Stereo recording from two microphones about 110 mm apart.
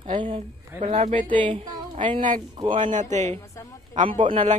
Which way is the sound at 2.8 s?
90° right.